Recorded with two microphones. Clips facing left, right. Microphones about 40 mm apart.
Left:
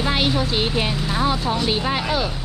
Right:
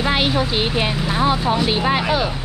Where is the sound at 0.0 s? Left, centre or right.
Centre.